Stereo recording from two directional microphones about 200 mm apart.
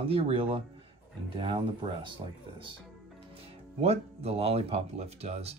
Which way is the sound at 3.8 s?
30° right (ahead or behind).